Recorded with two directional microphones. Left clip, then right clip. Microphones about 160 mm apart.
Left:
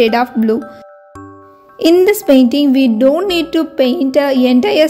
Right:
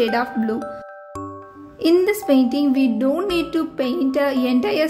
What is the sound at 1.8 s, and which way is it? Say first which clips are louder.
A woman's voice: left 7 dB; 50° left (ahead or behind).